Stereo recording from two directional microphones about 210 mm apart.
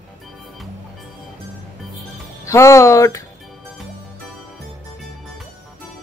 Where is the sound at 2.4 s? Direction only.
15° left (ahead or behind).